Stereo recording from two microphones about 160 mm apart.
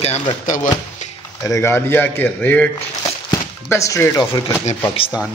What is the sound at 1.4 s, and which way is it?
A man's voice, 20° left (ahead or behind).